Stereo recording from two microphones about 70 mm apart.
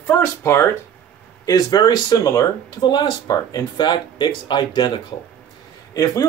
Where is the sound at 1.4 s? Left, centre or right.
Left.